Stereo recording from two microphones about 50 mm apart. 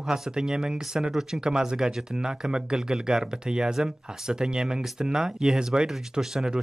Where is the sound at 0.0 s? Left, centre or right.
Centre.